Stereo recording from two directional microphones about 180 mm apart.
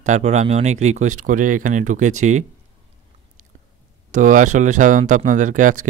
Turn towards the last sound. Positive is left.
turn(degrees=-45)  # may be behind; listen again after turning